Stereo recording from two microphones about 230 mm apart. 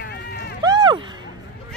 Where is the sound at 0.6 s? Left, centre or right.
Centre.